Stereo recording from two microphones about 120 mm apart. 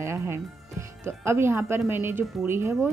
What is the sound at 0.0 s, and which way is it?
Speech, 25° right (ahead or behind).